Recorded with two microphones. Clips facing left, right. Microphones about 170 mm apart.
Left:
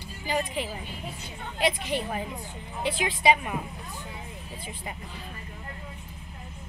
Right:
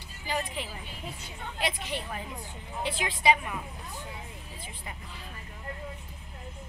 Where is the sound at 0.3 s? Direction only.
15° left (ahead or behind).